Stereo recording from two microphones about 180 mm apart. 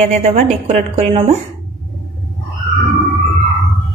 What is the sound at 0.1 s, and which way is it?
A woman's voice, 35° right (ahead or behind).